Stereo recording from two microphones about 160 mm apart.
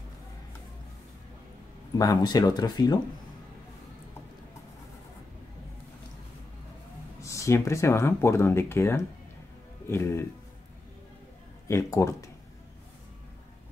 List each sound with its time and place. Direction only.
2.0 s speech: 25° left (ahead or behind)
7.2 s speech: 20° left (ahead or behind)
11.6 s speech: 20° left (ahead or behind)